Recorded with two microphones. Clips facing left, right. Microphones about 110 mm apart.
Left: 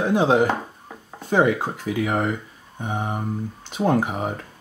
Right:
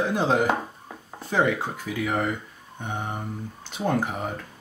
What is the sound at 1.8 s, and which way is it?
Speech, 5° left (ahead or behind).